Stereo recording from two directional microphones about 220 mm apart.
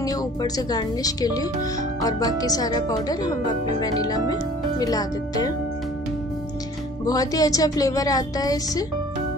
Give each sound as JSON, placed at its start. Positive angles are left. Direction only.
{"t": 0.0, "sound": "speech", "side_deg": 15}
{"t": 7.1, "sound": "speech", "side_deg": 15}